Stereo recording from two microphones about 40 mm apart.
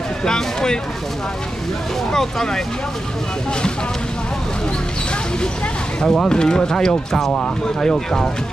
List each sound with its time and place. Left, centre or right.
0.2 s speech: centre
2.1 s speech: centre
5.9 s speech: centre